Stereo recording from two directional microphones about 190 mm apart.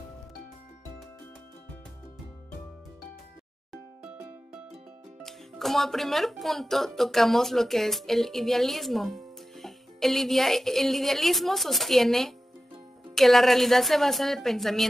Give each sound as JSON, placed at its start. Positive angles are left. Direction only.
{"t": 5.2, "sound": "speech", "side_deg": 0}